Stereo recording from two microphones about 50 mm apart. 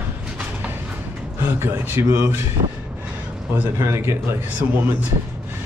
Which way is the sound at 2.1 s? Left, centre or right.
Right.